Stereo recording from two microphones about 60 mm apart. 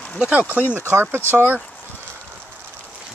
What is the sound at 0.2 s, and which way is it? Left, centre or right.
Speech, right.